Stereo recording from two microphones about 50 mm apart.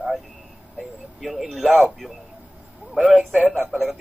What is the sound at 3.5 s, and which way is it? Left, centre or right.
Speech, centre.